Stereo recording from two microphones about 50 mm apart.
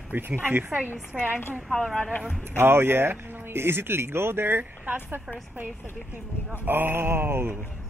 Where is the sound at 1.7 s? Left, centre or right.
Centre.